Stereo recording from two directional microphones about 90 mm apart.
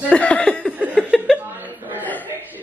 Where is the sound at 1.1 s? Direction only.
Centre (ahead or behind).